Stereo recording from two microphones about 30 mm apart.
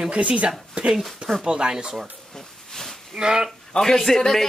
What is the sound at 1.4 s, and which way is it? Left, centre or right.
Speech, right.